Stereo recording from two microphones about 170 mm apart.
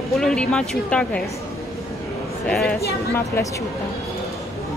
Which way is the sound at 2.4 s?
5° left (ahead or behind).